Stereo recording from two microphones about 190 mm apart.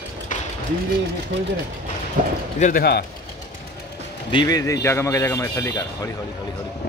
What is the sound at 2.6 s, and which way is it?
Speech, 45° left (ahead or behind).